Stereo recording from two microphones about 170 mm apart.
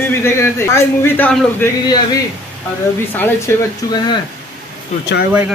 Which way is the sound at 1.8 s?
25° left (ahead or behind).